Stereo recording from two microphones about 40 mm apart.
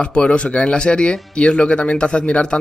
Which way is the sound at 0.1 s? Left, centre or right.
Left.